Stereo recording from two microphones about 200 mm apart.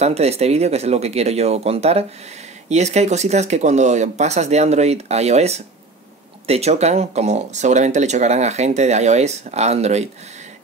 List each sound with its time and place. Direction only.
0.0 s speech: 30° right (ahead or behind)